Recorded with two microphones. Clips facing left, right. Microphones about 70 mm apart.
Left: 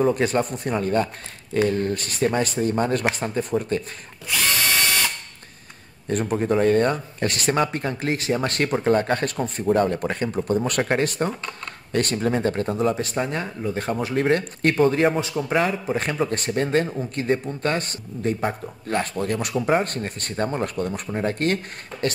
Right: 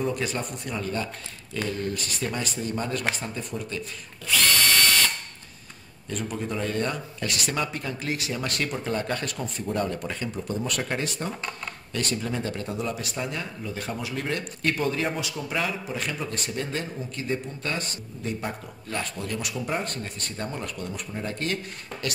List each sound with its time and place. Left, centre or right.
0.1 s a man's voice: left
4.4 s drill: centre
6.0 s a man's voice: left